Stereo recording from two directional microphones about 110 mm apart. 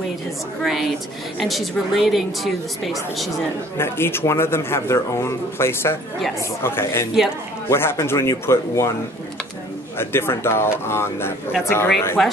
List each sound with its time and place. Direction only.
0.6 s a woman's voice: centre (ahead or behind)
3.7 s speech: 20° left (ahead or behind)
9.9 s speech: 20° left (ahead or behind)
12.2 s speech: 5° left (ahead or behind)